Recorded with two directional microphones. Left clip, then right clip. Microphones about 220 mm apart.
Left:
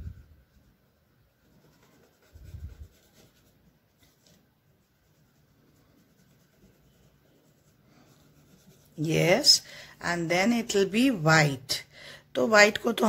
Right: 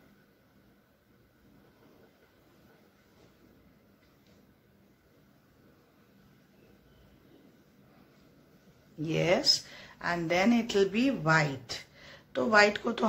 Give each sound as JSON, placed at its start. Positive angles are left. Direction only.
{"t": 9.0, "sound": "speech", "side_deg": 40}